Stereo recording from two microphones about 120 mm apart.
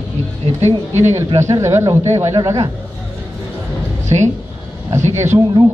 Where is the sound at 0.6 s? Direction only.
65° right (ahead or behind).